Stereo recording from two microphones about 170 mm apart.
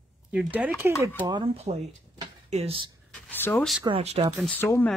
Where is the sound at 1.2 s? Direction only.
25° right (ahead or behind).